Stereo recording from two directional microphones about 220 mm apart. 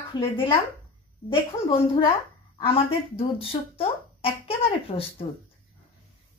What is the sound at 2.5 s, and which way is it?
Speech, 25° left (ahead or behind).